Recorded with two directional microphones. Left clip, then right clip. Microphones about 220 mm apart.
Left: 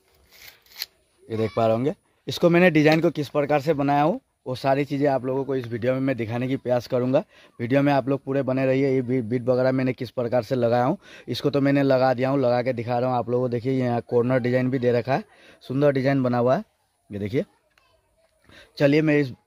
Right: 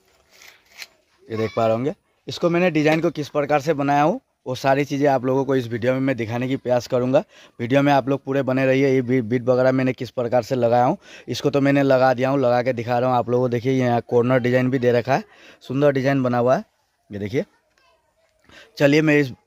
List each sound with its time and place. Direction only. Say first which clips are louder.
1.3 s speech: right 2 dB; centre (ahead or behind)
2.2 s speech: left 1 dB; 15° left (ahead or behind); by 5.2 s 10° right (ahead or behind)
5.2 s speech: right 5 dB; 40° right (ahead or behind)
5.7 s speech: right 3 dB; 15° right (ahead or behind)
18.5 s speech: right 3 dB; 5° right (ahead or behind)